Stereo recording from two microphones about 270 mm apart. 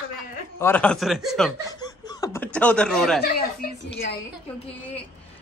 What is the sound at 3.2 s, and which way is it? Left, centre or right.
Speech, left.